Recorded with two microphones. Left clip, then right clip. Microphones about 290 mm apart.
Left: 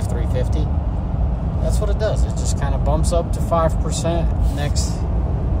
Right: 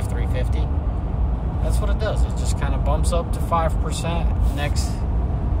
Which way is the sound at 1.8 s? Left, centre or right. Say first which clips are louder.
Left 4 dB; centre.